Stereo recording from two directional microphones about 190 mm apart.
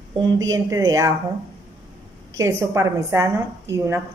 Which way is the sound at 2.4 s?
15° right (ahead or behind).